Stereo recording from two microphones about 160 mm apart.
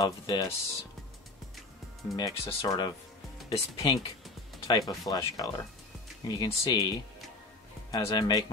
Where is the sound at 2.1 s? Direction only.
20° left (ahead or behind).